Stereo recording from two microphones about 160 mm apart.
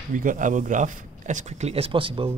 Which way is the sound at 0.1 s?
55° right (ahead or behind).